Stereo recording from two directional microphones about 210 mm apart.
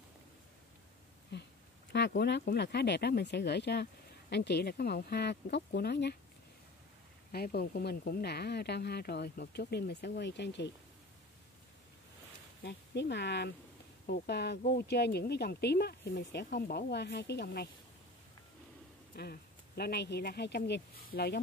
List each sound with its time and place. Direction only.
1.3 s a sound: 55° left (ahead or behind)
1.9 s speech: 55° left (ahead or behind)
7.3 s speech: 45° left (ahead or behind)
12.6 s speech: 55° left (ahead or behind)
19.1 s speech: 50° left (ahead or behind)